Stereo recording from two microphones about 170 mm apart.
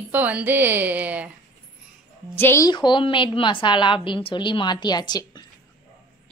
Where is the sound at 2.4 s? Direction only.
15° left (ahead or behind).